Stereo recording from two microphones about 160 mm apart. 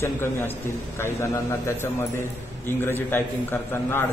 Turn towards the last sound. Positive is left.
turn(degrees=15)  # may be behind; listen again after turning